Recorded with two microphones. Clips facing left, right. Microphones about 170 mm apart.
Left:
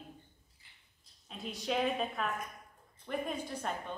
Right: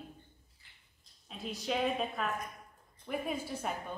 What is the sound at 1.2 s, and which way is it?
A woman's voice, centre (ahead or behind).